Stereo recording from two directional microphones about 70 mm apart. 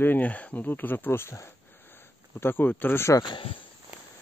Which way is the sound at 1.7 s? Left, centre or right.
Left.